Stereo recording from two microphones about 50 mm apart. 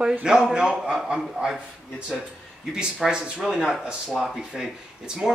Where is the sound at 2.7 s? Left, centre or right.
Centre.